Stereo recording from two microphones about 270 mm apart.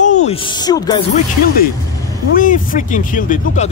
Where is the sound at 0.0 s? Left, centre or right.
Left.